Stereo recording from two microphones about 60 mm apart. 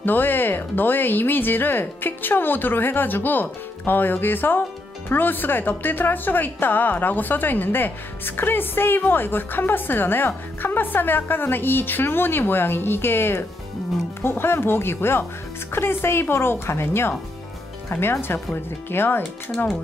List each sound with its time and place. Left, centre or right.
0.0 s a woman's voice: left
18.5 s a woman's voice: left